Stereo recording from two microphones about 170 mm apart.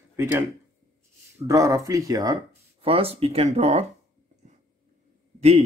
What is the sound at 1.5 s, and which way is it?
Speech, 20° right (ahead or behind).